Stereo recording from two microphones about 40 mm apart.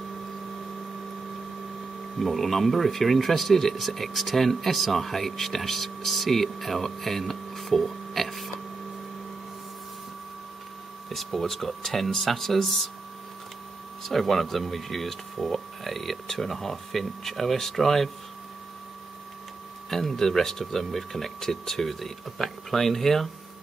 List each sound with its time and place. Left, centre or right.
2.1 s speech: centre
11.1 s speech: centre
14.0 s speech: centre
19.9 s speech: centre